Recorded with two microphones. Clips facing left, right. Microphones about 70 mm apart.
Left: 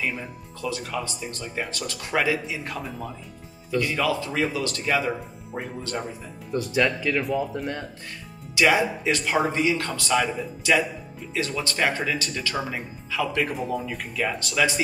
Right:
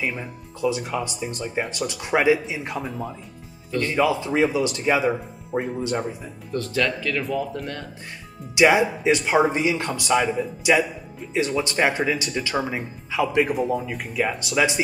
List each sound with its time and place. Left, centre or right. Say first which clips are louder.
0.0 s speech: right 1 dB; centre
2.8 s speech: right 3 dB; centre
3.9 s speech: right 4 dB; centre
5.5 s speech: right 8 dB; centre
5.9 s speech: right 5 dB; centre
6.5 s speech: left 1 dB; centre
8.5 s speech: right 3 dB; centre
13.5 s speech: right 4 dB; centre